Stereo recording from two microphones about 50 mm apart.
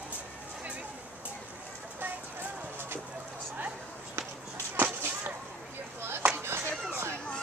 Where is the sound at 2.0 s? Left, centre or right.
Right.